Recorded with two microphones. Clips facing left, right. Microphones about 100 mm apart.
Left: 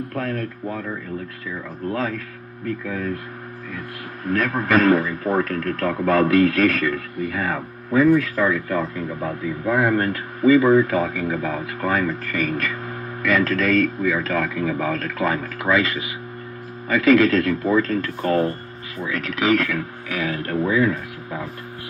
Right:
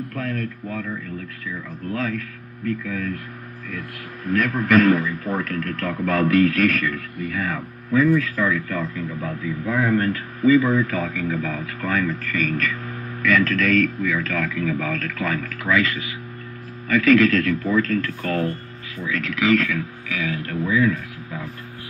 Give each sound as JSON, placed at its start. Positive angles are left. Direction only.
{"t": 0.1, "sound": "a man's voice", "side_deg": 30}
{"t": 4.3, "sound": "a man's voice", "side_deg": 30}
{"t": 10.9, "sound": "speech", "side_deg": 20}
{"t": 19.5, "sound": "speech", "side_deg": 45}